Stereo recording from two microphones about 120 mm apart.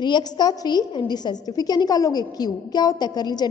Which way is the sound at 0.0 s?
35° left (ahead or behind).